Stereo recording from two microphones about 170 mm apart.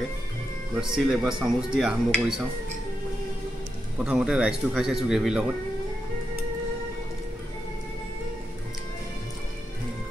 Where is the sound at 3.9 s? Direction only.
5° right (ahead or behind).